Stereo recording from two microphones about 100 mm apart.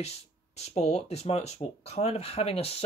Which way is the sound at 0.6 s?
90° left.